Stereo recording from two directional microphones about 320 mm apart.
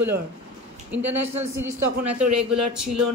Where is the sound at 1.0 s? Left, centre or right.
Right.